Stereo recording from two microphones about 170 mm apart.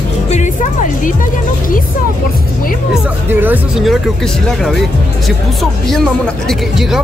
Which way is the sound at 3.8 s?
Centre (ahead or behind).